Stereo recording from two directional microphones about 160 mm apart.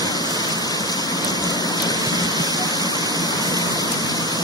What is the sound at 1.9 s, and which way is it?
Waterfall, 25° right (ahead or behind).